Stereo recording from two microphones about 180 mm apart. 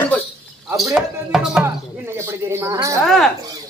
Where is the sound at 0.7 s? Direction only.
Centre (ahead or behind).